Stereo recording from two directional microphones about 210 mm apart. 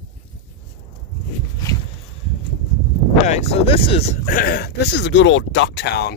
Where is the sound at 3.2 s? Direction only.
30° left (ahead or behind).